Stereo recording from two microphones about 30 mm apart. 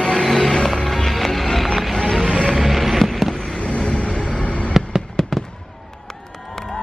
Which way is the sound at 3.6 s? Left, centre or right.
Left.